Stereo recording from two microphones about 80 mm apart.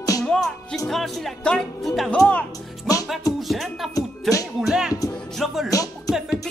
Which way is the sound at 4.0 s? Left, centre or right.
Left.